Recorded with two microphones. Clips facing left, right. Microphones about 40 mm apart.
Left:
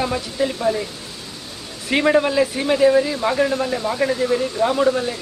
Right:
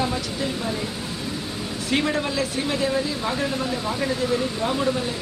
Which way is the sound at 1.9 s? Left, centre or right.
Left.